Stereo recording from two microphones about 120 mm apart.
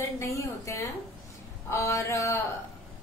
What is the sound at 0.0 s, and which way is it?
A woman's voice, 25° left (ahead or behind).